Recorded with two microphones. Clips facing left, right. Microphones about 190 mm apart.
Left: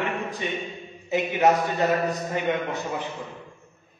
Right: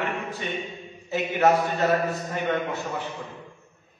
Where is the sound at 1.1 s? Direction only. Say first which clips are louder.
Even; 15° left (ahead or behind).